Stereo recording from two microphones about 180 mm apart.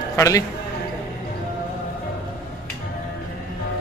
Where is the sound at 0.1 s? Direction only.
15° left (ahead or behind).